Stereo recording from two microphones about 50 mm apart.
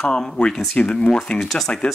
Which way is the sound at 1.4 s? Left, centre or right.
Centre.